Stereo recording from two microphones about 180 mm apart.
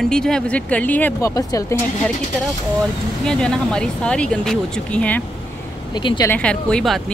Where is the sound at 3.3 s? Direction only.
5° left (ahead or behind).